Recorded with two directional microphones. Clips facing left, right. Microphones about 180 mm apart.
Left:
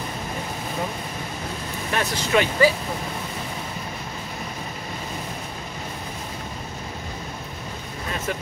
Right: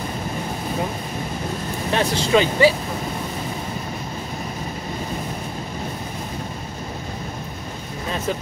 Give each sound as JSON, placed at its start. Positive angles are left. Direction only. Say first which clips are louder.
{"t": 1.9, "sound": "speech", "louder": "right 5 dB", "side_deg": -25}